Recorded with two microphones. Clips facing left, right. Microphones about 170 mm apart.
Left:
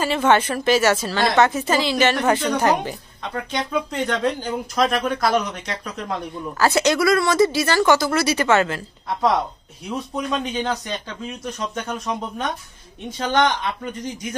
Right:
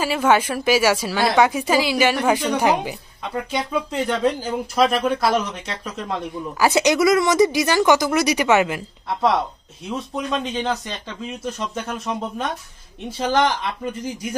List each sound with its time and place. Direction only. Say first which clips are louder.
0.0 s a woman's voice: even; 5° right (ahead or behind)
6.6 s a woman's voice: right 1 dB; 15° right (ahead or behind)
9.8 s speech: even; centre (ahead or behind)